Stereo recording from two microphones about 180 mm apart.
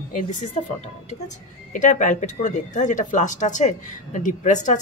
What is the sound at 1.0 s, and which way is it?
Speech, 45° left (ahead or behind).